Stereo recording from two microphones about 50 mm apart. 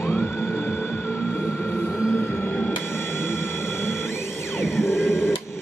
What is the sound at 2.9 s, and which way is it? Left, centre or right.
Music, left.